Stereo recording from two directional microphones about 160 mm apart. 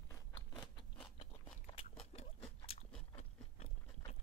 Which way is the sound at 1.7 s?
40° left (ahead or behind).